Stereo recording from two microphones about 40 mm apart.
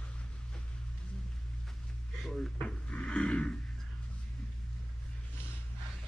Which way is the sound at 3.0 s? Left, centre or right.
Left.